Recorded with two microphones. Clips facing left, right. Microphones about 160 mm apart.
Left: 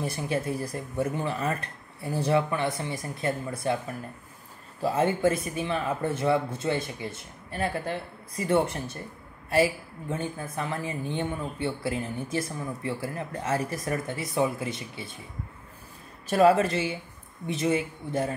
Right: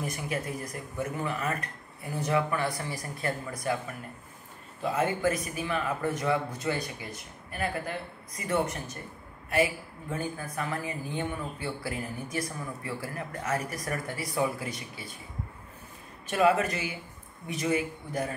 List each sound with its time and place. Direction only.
0.0 s speech: 30° left (ahead or behind)
4.8 s a woman's voice: 30° left (ahead or behind)
16.3 s speech: 35° left (ahead or behind)